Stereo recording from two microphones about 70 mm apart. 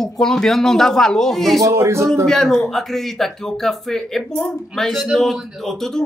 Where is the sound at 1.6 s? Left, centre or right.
Right.